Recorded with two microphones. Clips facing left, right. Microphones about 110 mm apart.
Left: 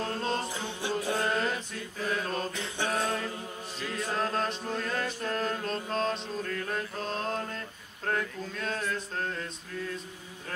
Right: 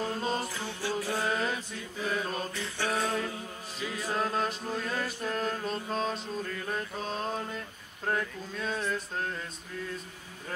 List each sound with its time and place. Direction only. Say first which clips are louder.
0.0 s music: even; 5° right (ahead or behind)
0.5 s music: left 1 dB; 20° left (ahead or behind)
1.2 s mantra: left 1 dB; 5° right (ahead or behind)
2.5 s mantra: left 1 dB; 20° left (ahead or behind)
2.9 s mantra: right 1 dB; centre (ahead or behind)